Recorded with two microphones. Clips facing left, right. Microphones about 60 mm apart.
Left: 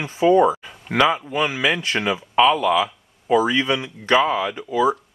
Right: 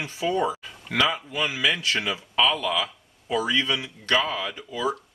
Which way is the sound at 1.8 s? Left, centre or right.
Left.